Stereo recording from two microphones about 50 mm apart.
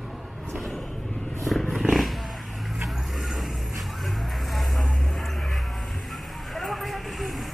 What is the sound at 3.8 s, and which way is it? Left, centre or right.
Music, centre.